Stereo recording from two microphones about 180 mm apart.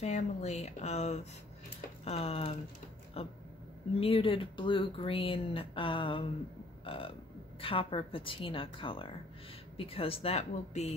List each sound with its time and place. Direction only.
0.0 s speech: 35° left (ahead or behind)